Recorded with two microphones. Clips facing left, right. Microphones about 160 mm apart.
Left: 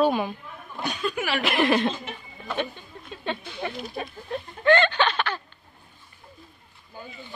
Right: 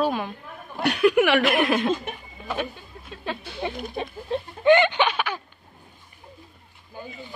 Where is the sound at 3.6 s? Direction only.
20° right (ahead or behind).